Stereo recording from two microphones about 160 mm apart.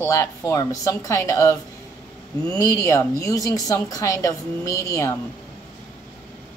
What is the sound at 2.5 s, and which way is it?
Speech, 20° left (ahead or behind).